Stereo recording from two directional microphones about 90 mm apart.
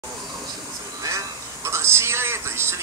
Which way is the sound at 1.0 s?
35° right (ahead or behind).